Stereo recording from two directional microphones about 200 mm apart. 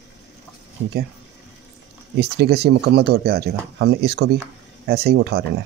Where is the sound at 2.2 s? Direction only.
55° right (ahead or behind).